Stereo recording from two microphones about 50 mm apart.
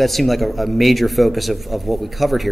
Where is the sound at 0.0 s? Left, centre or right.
Centre.